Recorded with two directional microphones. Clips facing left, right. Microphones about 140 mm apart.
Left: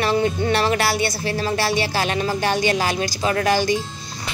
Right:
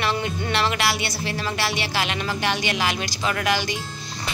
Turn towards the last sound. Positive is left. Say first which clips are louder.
# left 5 dB
turn(degrees=40)  # may be behind; listen again after turning